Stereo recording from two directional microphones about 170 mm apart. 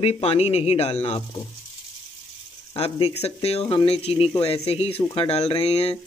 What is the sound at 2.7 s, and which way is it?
Speech, 35° left (ahead or behind).